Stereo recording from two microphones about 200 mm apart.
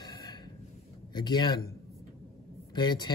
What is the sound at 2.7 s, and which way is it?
Speech, 20° left (ahead or behind).